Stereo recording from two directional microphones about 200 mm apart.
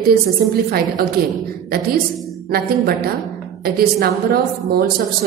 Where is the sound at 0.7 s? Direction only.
50° right (ahead or behind).